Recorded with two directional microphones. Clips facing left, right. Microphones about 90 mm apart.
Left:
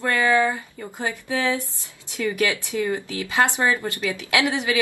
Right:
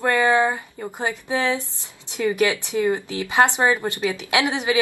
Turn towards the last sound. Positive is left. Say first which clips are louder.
# right 1 dB
turn(degrees=-20)  # may be behind; listen again after turning